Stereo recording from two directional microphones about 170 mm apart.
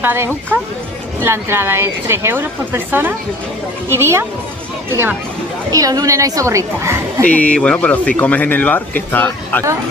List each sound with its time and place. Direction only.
0.0 s a woman's voice: 15° right (ahead or behind)
7.2 s speech: 10° left (ahead or behind)